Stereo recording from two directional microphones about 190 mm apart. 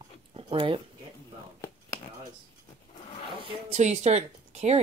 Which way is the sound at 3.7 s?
35° right (ahead or behind).